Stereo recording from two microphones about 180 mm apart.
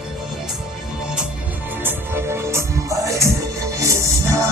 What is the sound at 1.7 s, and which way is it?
Music, 10° right (ahead or behind).